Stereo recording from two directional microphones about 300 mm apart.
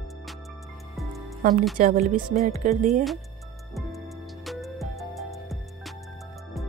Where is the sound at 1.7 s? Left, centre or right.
Right.